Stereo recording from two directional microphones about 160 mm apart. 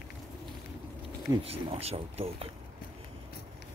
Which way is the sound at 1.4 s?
35° right (ahead or behind).